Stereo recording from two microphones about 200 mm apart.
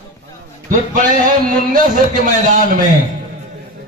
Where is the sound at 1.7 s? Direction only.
40° right (ahead or behind).